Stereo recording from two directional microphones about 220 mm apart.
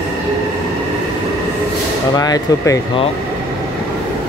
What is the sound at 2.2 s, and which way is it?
Speech, 15° left (ahead or behind).